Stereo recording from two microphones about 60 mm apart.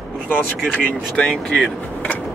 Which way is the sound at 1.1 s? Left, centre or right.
Centre.